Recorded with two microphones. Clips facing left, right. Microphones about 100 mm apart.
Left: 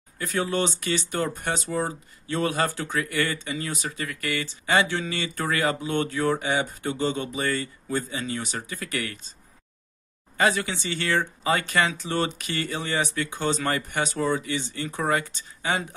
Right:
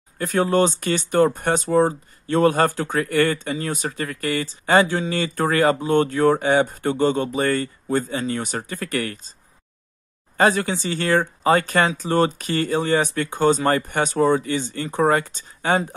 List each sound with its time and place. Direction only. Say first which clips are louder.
0.2 s speech: right 7 dB; 45° right (ahead or behind)
10.3 s speech: right 5 dB; 45° right (ahead or behind)